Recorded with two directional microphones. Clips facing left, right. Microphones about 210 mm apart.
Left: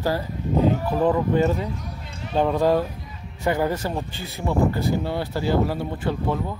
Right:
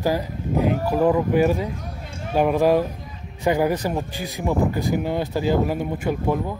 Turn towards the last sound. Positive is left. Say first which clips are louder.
# right 2 dB
turn(degrees=-15)  # may be behind; listen again after turning